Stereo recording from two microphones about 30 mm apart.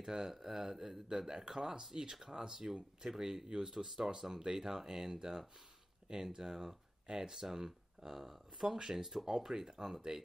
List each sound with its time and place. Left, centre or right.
0.0 s speech: centre
9.2 s speech: right